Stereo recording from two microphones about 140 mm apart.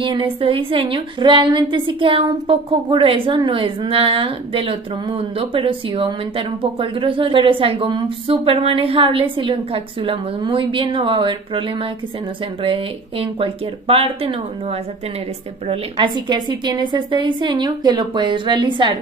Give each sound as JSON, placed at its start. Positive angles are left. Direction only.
{"t": 0.0, "sound": "a woman's voice", "side_deg": -40}
{"t": 15.7, "sound": "a woman's voice", "side_deg": -35}